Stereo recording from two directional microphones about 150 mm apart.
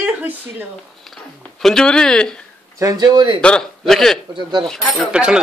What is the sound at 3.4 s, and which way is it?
Speech, 5° left (ahead or behind).